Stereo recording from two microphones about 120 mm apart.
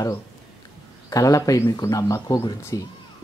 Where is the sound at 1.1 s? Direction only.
30° left (ahead or behind).